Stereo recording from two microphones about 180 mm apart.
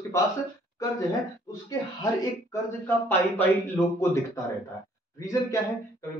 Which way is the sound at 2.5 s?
10° left (ahead or behind).